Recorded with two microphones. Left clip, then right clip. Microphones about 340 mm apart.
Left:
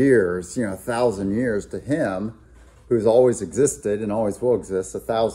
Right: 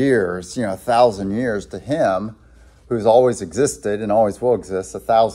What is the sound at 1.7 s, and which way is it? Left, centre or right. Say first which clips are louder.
Speech: right 5 dB; right.